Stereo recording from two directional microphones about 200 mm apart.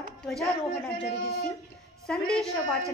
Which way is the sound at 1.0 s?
50° left (ahead or behind).